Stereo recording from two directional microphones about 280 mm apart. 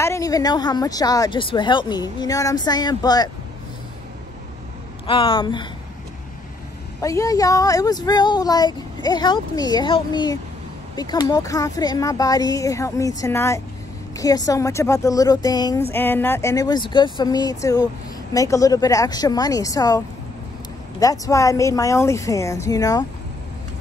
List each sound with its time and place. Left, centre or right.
0.0 s speech: centre
5.0 s speech: centre
7.0 s speech: centre
21.0 s speech: centre